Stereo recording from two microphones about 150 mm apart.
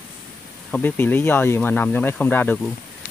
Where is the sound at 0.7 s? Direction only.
15° left (ahead or behind).